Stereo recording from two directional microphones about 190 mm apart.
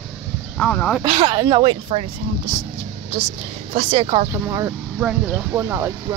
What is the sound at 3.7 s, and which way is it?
Speech, 30° right (ahead or behind).